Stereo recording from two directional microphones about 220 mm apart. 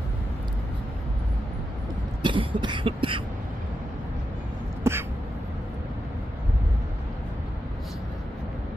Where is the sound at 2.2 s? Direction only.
20° right (ahead or behind).